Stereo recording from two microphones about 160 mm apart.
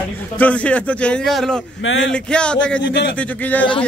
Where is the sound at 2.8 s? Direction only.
90° left.